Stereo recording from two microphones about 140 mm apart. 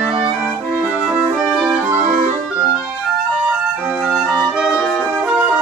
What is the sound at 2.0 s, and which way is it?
Music, 65° right (ahead or behind).